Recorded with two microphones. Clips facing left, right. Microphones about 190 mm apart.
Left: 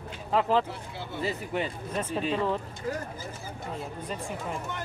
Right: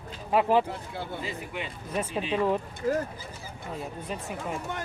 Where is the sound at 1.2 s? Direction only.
40° left (ahead or behind).